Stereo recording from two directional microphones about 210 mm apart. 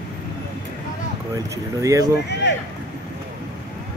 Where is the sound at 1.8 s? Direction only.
15° right (ahead or behind).